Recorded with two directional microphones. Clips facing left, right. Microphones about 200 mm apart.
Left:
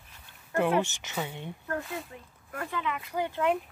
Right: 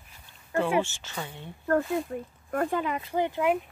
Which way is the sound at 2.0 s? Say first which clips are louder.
Right 12 dB; 45° right (ahead or behind).